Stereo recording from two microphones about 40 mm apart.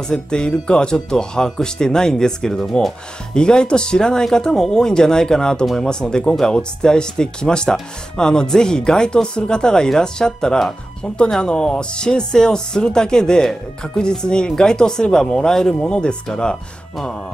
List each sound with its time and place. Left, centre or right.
0.1 s speech: centre